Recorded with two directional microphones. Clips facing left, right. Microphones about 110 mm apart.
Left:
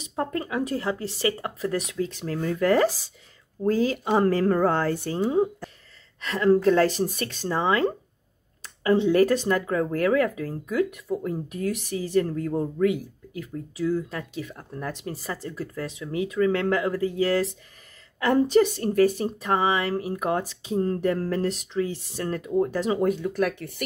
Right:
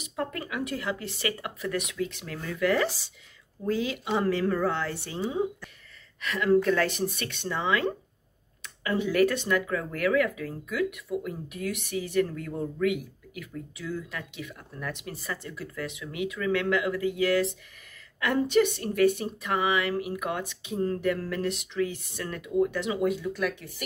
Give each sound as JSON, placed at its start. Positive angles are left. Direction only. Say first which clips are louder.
{"t": 0.0, "sound": "speech", "louder": "left 4 dB", "side_deg": 30}
{"t": 6.2, "sound": "speech", "louder": "left 4 dB", "side_deg": 30}